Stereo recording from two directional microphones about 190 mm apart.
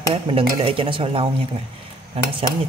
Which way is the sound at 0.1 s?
30° right (ahead or behind).